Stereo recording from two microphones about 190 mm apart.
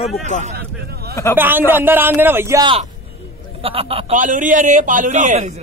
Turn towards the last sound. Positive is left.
turn(degrees=-35)  # may be behind; listen again after turning